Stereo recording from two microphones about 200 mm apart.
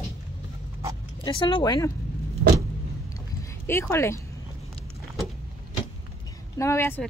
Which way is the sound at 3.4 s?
10° left (ahead or behind).